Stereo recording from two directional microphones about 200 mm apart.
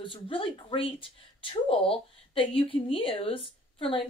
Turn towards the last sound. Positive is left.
turn(degrees=25)  # may be behind; listen again after turning